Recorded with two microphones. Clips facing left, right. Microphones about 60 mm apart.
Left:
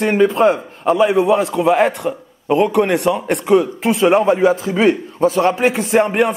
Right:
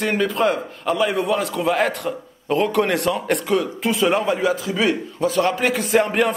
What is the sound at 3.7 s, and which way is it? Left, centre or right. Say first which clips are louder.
A man's voice: left 6 dB; left.